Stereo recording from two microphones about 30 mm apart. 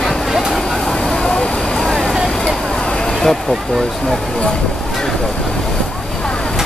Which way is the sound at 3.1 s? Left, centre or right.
Centre.